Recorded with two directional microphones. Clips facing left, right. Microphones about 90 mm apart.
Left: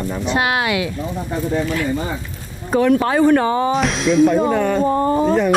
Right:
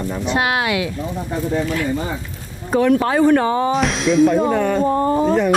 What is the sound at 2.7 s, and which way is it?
Speech, 25° left (ahead or behind).